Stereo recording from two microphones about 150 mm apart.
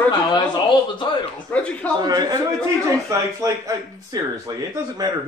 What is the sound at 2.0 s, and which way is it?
Speech, 25° right (ahead or behind).